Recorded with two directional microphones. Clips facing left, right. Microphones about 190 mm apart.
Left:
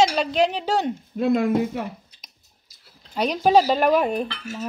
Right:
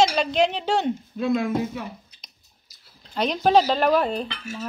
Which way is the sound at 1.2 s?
55° left (ahead or behind).